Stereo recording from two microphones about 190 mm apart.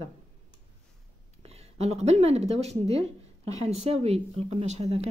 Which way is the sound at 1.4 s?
35° right (ahead or behind).